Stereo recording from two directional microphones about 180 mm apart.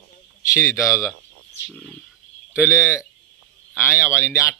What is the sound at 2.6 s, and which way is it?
Speech, 15° left (ahead or behind).